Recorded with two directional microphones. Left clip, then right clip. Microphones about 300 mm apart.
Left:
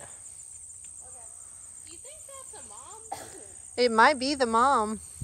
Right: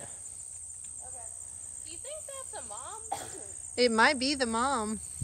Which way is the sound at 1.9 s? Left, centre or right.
Right.